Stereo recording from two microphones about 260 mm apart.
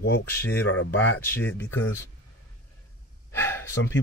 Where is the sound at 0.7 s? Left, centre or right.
Left.